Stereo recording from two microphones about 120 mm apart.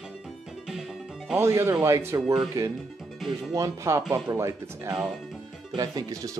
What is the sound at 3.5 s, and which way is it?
Speech, 25° right (ahead or behind).